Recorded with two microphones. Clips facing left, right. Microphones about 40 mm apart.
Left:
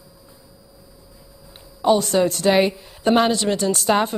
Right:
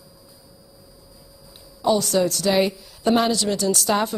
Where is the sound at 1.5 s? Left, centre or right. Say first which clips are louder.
Left 3 dB; left.